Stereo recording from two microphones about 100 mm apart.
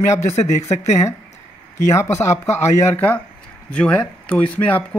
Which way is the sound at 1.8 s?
30° left (ahead or behind).